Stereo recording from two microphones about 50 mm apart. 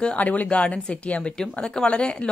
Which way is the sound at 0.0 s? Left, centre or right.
Left.